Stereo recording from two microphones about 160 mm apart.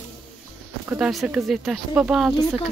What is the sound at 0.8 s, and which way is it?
Speech, 5° right (ahead or behind).